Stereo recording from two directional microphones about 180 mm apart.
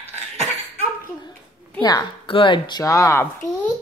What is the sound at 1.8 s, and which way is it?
A woman's voice, 25° left (ahead or behind).